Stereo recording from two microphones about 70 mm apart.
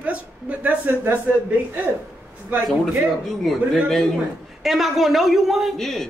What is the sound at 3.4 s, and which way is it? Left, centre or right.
A woman's voice, centre.